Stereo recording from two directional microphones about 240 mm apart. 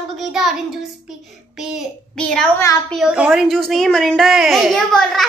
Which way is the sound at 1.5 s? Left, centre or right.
Centre.